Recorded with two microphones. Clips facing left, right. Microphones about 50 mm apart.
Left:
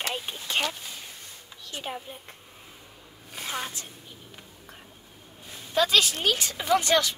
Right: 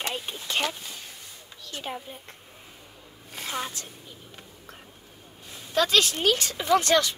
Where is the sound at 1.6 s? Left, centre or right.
Centre.